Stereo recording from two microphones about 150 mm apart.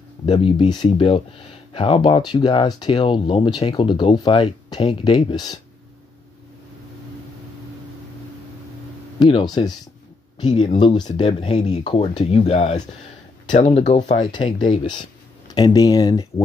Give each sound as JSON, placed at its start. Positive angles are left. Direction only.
{"t": 0.3, "sound": "speech", "side_deg": 35}
{"t": 9.2, "sound": "speech", "side_deg": 30}
{"t": 10.8, "sound": "speech", "side_deg": 30}
{"t": 14.2, "sound": "speech", "side_deg": 30}